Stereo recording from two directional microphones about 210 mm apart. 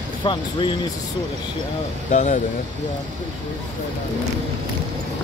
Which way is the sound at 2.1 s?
35° left (ahead or behind).